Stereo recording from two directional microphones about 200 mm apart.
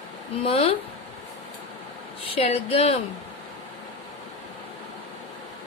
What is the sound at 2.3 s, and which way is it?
Speech, 30° left (ahead or behind).